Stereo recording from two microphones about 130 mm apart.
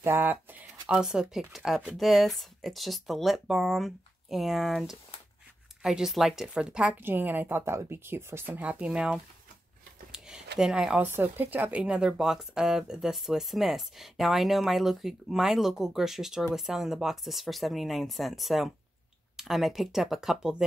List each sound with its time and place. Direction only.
0.0 s speech: 15° right (ahead or behind)
10.1 s a sound: 5° right (ahead or behind)
11.1 s speech: 15° right (ahead or behind)